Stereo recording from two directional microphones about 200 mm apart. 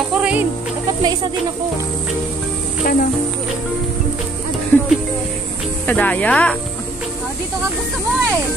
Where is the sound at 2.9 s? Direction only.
45° left (ahead or behind).